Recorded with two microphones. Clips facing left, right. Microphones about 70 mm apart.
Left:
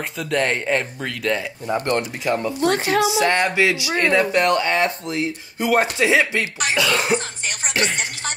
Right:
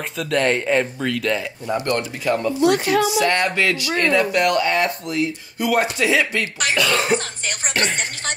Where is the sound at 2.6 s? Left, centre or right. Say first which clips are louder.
Right 2 dB; left.